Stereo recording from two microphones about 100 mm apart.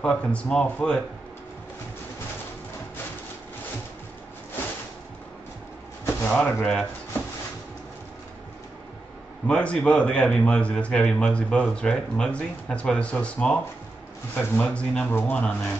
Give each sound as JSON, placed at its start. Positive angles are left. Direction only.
{"t": 0.0, "sound": "a man's voice", "side_deg": 10}
{"t": 6.2, "sound": "a man's voice", "side_deg": 15}
{"t": 9.5, "sound": "a man's voice", "side_deg": 10}